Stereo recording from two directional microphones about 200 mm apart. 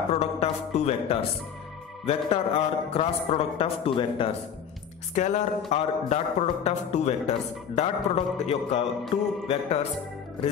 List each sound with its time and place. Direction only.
0.1 s music: 30° left (ahead or behind)
2.0 s a man's voice: 30° left (ahead or behind)
5.1 s music: 35° left (ahead or behind)